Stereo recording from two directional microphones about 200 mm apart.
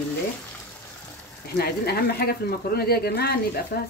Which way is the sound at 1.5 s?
50° left (ahead or behind).